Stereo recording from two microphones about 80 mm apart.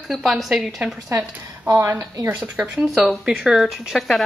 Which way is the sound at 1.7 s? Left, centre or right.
Right.